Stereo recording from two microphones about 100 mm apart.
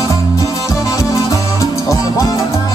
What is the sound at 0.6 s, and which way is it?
Music, 30° left (ahead or behind).